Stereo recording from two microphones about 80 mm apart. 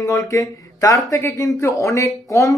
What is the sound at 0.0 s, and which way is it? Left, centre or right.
Speech, left.